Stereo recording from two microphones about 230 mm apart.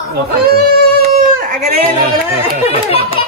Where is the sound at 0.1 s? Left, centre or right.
Right.